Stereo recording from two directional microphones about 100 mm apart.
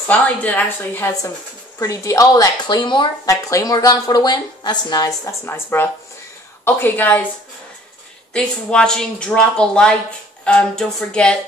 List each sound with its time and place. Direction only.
0.1 s a woman's voice: 15° left (ahead or behind)
1.8 s speech: 30° left (ahead or behind); by 3.1 s 50° left (ahead or behind)
3.3 s a woman's voice: 35° left (ahead or behind); by 7.2 s 15° left (ahead or behind)
8.3 s a woman's voice: 10° left (ahead or behind)